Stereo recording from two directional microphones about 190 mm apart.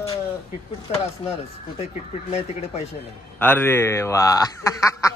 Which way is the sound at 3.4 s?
10° left (ahead or behind).